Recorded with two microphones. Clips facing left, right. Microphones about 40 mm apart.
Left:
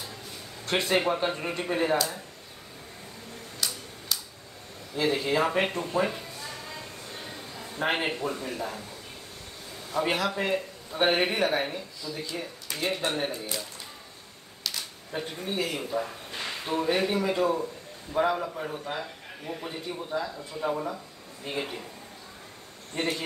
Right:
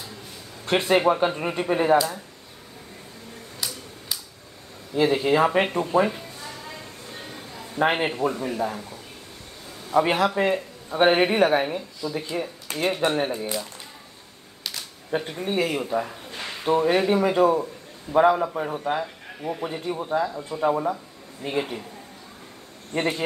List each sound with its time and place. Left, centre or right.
0.7 s speech: centre
3.6 s a sound: centre
4.9 s speech: centre
6.0 s a sound: centre
7.7 s a man's voice: centre
9.9 s speech: right
12.1 s speech: right
12.6 s a sound: right
12.9 s speech: centre
15.0 s speech: right
20.0 s speech: right
22.9 s speech: centre